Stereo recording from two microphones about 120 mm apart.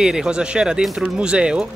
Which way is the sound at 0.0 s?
5° right (ahead or behind).